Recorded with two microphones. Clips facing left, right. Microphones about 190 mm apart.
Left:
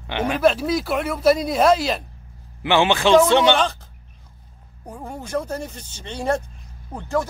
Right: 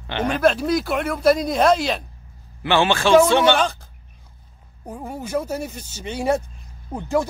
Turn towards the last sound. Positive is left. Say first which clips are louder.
# right 2 dB
turn(degrees=-10)  # may be behind; listen again after turning